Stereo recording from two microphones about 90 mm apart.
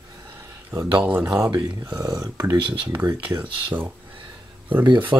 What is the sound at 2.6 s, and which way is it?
Speech, 65° right (ahead or behind).